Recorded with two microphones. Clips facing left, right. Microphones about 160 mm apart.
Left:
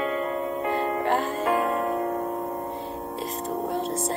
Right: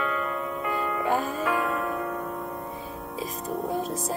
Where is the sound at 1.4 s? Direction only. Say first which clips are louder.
Left 3 dB; 40° left (ahead or behind).